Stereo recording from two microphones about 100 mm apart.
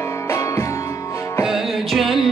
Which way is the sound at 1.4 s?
Centre (ahead or behind).